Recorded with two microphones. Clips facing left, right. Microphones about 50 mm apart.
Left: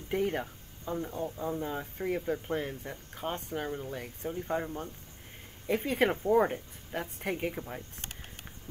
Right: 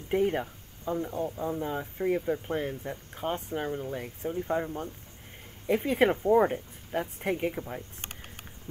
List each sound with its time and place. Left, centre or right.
0.1 s speech: centre
1.1 s speech: right
1.4 s speech: centre